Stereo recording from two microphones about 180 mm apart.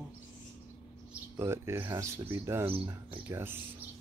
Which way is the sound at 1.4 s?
15° right (ahead or behind).